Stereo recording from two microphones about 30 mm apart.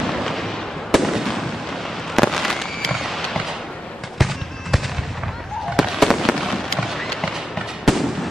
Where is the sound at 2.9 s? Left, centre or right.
Centre.